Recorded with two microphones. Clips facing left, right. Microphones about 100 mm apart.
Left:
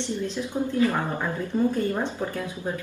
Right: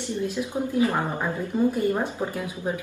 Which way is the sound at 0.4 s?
15° right (ahead or behind).